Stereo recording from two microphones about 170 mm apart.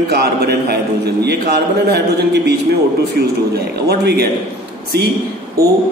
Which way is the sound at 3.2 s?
70° right (ahead or behind).